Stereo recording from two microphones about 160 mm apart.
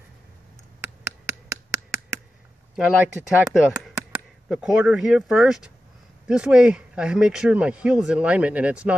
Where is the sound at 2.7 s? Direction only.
5° right (ahead or behind).